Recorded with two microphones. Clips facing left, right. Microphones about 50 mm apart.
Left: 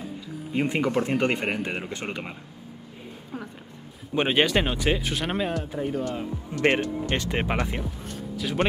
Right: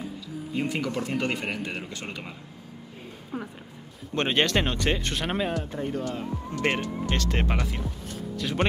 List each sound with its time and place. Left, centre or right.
0.5 s speech: left
4.1 s speech: centre
7.8 s speech: centre